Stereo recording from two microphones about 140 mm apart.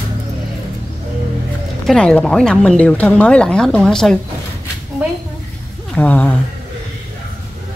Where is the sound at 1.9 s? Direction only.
5° left (ahead or behind).